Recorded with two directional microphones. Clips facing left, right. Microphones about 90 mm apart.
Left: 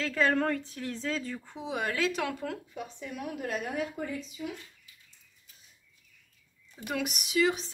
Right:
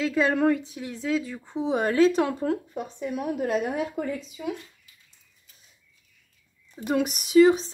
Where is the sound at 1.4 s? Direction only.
30° right (ahead or behind).